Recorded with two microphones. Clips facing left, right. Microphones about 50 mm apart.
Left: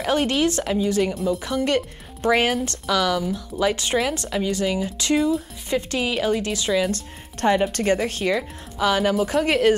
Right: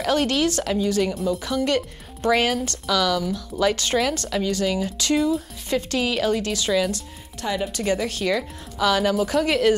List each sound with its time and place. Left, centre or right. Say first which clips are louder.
0.0 s speech: even; left
1.1 s speech: left 1 dB; centre
1.4 s speech: even; left
5.1 s speech: left 1 dB; centre
5.7 s speech: even; left
7.7 s speech: left 2 dB; left